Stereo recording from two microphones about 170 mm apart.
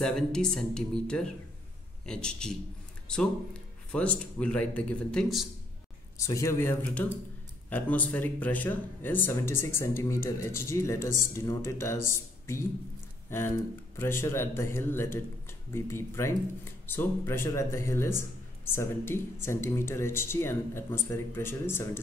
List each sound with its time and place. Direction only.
0.0 s speech: 5° left (ahead or behind)
3.9 s speech: 5° left (ahead or behind)
6.1 s speech: 20° left (ahead or behind)
13.9 s speech: 15° left (ahead or behind)